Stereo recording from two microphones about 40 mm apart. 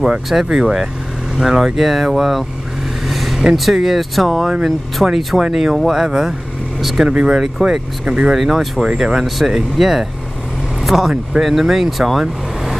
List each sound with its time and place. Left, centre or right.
0.3 s speech: centre
0.6 s speech: centre
3.1 s vehicle: centre
3.5 s speech: centre
7.1 s speech: centre
8.3 s speech: centre
8.8 s speech: centre
9.2 s speech: centre